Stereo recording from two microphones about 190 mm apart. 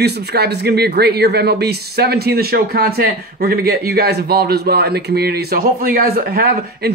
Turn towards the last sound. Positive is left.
turn(degrees=-55)  # may be behind; listen again after turning